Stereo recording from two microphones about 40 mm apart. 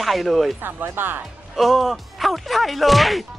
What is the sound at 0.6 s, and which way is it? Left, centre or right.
Speech, right.